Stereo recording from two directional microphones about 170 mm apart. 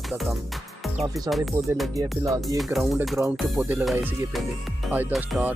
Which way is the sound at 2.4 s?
Centre (ahead or behind).